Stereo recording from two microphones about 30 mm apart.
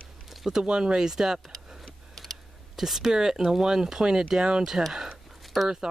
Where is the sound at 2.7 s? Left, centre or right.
Centre.